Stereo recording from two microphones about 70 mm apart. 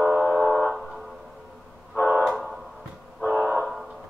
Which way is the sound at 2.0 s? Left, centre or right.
Left.